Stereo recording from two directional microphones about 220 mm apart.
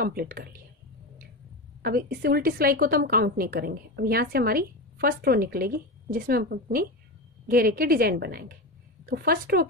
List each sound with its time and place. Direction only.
0.0 s a woman's voice: 45° right (ahead or behind)
1.8 s a woman's voice: 45° right (ahead or behind)